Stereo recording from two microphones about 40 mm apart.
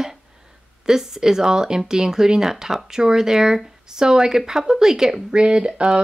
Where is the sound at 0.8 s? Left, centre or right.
Centre.